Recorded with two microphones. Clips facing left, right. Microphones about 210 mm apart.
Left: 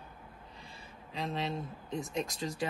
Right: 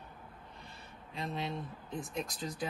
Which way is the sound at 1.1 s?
Centre (ahead or behind).